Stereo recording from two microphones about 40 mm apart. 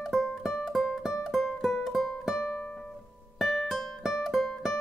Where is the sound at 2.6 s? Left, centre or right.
Left.